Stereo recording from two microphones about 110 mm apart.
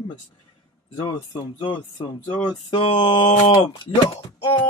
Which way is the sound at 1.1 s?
45° left (ahead or behind).